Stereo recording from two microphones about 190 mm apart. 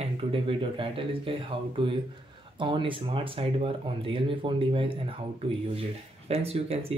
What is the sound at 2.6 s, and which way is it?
Speech, 25° right (ahead or behind).